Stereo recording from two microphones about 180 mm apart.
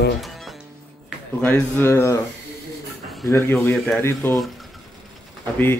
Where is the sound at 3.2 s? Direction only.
15° left (ahead or behind).